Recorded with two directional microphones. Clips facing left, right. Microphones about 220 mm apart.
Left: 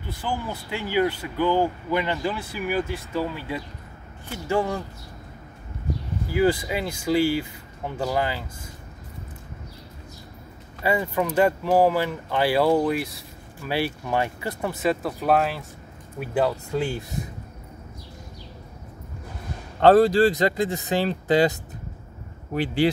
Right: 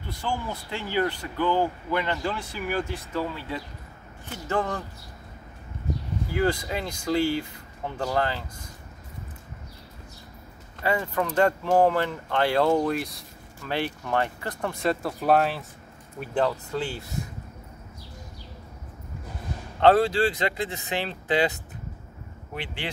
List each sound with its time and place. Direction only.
0.2 s speech: 5° left (ahead or behind)
6.3 s speech: 10° left (ahead or behind)
10.8 s speech: 10° left (ahead or behind)
19.8 s speech: 40° left (ahead or behind)